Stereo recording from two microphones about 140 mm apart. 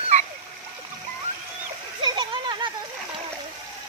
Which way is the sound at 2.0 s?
35° right (ahead or behind).